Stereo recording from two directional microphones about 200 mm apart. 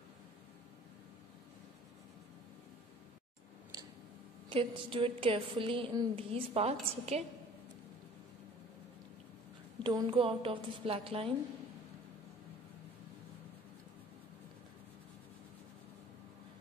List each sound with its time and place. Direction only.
3.7 s tick-tock: 15° right (ahead or behind)
4.5 s a woman's voice: 25° right (ahead or behind)
9.8 s a woman's voice: 25° right (ahead or behind)